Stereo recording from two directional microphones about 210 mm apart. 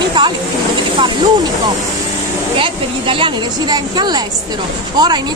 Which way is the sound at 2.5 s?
25° right (ahead or behind).